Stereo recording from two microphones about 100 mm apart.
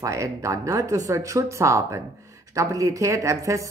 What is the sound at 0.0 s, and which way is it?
Speech, 30° right (ahead or behind).